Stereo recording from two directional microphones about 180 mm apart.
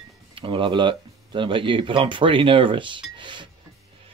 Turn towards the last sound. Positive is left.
turn(degrees=-25)  # may be behind; listen again after turning